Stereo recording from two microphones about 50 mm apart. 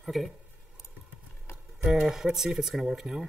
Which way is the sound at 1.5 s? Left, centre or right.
Left.